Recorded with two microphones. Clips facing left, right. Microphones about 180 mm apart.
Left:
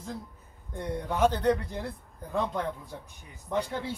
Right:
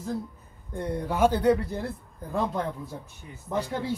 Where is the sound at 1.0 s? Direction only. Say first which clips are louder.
Right 3 dB; 10° right (ahead or behind).